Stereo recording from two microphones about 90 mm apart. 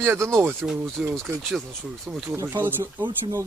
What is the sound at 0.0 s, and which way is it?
Speech, 30° right (ahead or behind).